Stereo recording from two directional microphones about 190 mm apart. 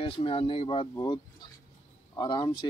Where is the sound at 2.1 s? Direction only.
20° left (ahead or behind).